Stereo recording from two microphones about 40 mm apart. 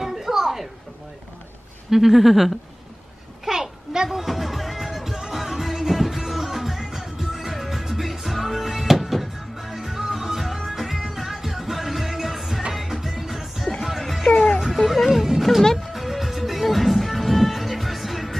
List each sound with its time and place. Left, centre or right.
0.0 s a sound: centre
1.9 s speech: centre
3.4 s a sound: centre
4.1 s music: centre
14.3 s music: left
14.9 s music: centre
15.6 s music: centre
15.9 s music: centre